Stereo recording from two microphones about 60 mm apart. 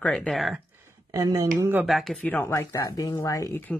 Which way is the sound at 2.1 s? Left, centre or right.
Left.